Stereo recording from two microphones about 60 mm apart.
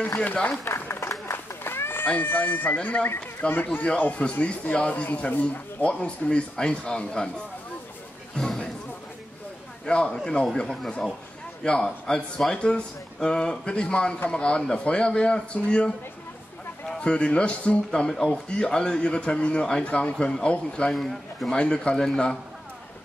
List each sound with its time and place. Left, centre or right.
0.2 s speech: left
0.7 s a sound: left
1.3 s run: left
2.0 s speech: left; by 7.2 s centre
8.4 s a sound: centre
9.8 s speech: centre
17.0 s speech: centre
20.9 s a man's voice: centre
21.5 s speech: centre